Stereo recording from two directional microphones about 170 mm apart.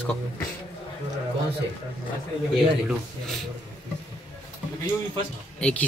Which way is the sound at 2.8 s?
Centre (ahead or behind).